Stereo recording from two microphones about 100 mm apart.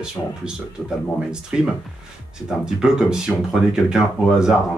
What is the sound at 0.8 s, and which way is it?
Speech, 10° right (ahead or behind).